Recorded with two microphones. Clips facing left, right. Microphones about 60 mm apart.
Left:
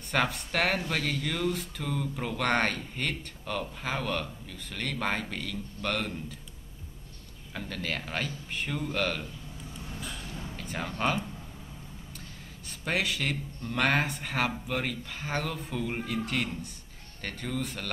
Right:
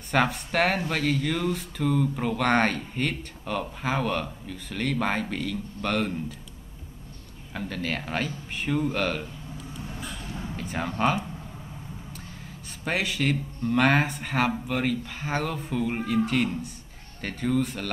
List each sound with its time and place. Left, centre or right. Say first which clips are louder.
0.1 s speech: right 4 dB; centre
7.5 s speech: right 4 dB; centre
9.9 s a sound: right 1 dB; right
10.5 s a sound: right 5 dB; centre
11.0 s speech: right 4 dB; centre
12.8 s speech: right 4 dB; centre